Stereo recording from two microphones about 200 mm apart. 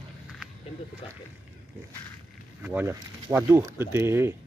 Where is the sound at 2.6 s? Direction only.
10° right (ahead or behind).